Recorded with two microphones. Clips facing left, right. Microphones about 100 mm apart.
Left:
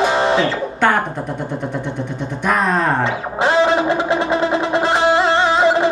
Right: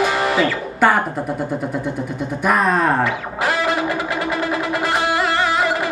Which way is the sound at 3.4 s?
25° left (ahead or behind).